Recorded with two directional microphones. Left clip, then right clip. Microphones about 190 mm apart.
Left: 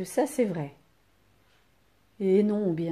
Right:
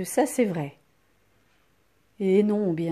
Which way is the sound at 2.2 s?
30° right (ahead or behind).